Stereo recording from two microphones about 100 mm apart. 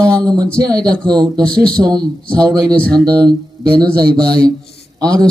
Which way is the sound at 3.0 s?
45° right (ahead or behind).